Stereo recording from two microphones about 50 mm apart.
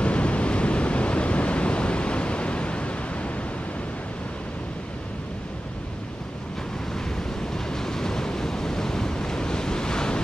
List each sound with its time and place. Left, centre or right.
0.0 s waves: left
7.5 s waves: centre